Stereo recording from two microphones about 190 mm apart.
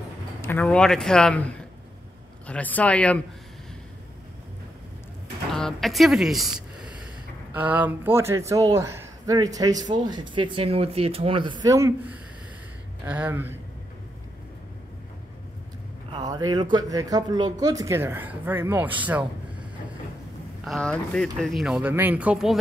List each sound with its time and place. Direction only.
0.4 s a sound: 10° left (ahead or behind)
0.7 s speech: 5° left (ahead or behind)
5.5 s a sound: centre (ahead or behind)
7.5 s speech: 10° right (ahead or behind)
16.1 s a man's voice: 20° right (ahead or behind)
20.6 s speech: 5° left (ahead or behind)